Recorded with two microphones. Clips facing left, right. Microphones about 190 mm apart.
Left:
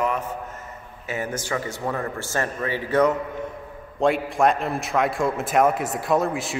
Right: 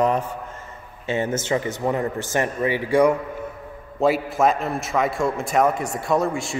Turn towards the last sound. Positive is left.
turn(degrees=0)  # may be behind; listen again after turning